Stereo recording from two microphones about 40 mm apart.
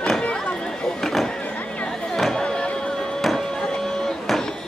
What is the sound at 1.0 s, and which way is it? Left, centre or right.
Vehicle, centre.